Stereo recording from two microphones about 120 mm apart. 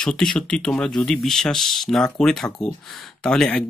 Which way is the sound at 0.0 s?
5° left (ahead or behind).